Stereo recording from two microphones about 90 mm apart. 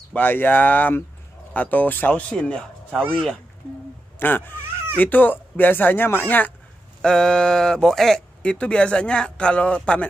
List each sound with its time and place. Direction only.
0.1 s speech: 20° left (ahead or behind)
4.2 s speech: 20° left (ahead or behind)
7.0 s speech: 10° left (ahead or behind)